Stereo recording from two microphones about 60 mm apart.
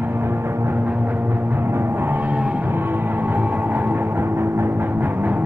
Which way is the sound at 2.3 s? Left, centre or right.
Right.